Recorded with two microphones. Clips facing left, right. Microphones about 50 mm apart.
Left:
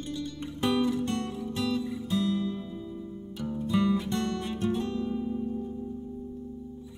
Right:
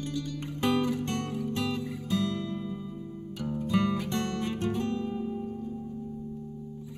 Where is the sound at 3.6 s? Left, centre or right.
Right.